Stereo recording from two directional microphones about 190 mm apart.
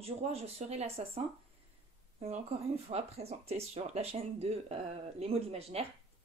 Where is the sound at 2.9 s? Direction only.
35° right (ahead or behind).